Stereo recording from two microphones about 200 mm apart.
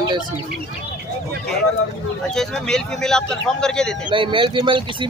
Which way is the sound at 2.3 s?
5° left (ahead or behind).